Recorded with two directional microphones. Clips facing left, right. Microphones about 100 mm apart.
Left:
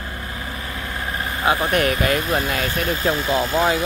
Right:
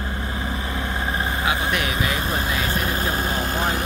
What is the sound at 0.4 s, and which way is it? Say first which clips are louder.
Vehicle: right 4 dB; 25° right (ahead or behind).